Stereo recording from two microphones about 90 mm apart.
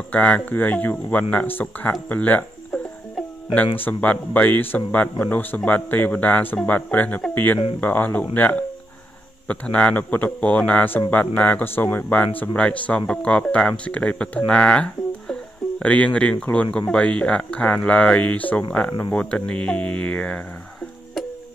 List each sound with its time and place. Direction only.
0.1 s speech: 15° left (ahead or behind)
3.8 s speech: 20° left (ahead or behind)